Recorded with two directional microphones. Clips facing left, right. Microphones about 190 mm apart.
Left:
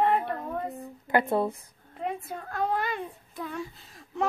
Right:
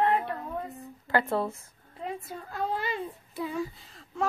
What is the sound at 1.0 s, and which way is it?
Speech, 15° left (ahead or behind).